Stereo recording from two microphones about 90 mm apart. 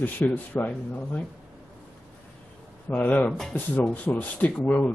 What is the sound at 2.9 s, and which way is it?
Speech, 15° left (ahead or behind).